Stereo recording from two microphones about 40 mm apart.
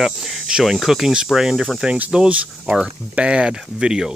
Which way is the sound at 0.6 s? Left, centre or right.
Centre.